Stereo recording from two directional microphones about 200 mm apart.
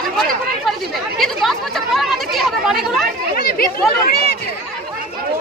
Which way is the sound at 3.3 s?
50° left (ahead or behind).